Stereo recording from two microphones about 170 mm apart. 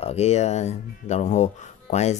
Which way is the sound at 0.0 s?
40° left (ahead or behind).